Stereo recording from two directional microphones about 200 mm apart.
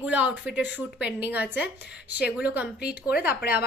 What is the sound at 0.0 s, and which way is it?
A woman's voice, 5° right (ahead or behind).